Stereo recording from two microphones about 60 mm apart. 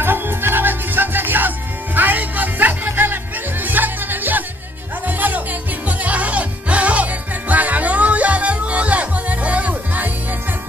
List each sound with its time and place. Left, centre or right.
0.0 s music: right